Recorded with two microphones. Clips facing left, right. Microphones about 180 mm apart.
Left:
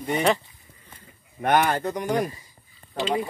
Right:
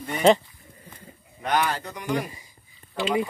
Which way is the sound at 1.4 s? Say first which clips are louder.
Left 4 dB; 55° left (ahead or behind).